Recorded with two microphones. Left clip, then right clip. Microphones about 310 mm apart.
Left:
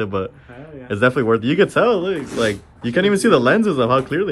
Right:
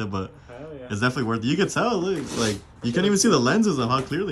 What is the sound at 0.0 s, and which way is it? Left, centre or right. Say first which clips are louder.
Speech: left 8 dB; centre.